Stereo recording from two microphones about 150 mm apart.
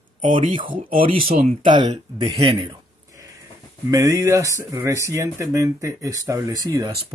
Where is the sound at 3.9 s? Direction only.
20° right (ahead or behind).